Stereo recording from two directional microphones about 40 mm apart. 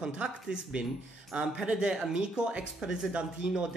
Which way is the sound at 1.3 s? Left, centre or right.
Right.